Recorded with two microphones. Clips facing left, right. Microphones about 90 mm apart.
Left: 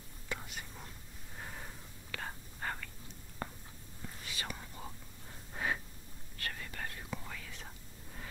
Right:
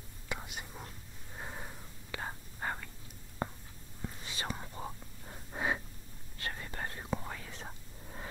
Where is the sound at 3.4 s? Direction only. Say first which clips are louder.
Right 5 dB; 20° right (ahead or behind).